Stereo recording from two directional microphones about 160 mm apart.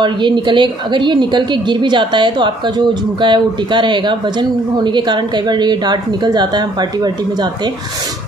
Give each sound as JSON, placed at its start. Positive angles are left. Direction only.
{"t": 0.0, "sound": "a woman's voice", "side_deg": -30}